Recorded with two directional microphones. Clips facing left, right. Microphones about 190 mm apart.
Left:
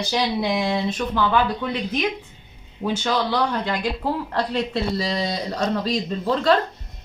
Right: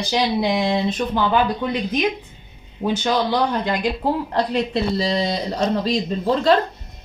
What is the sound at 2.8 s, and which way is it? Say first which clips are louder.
Speech: right 3 dB; 20° right (ahead or behind).